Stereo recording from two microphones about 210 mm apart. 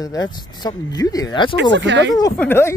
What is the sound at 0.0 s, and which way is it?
Speech, 15° left (ahead or behind).